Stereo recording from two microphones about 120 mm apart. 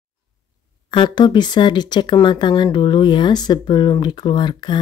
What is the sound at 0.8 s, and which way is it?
Speech, 40° left (ahead or behind).